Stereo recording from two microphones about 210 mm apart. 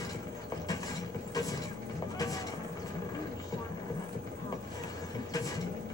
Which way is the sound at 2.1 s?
15° left (ahead or behind).